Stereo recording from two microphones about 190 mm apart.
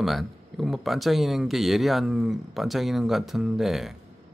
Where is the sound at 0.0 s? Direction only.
Centre (ahead or behind).